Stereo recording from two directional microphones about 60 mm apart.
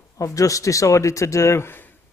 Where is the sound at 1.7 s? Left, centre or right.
Left.